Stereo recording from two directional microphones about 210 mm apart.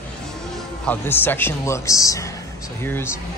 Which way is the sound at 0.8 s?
10° left (ahead or behind).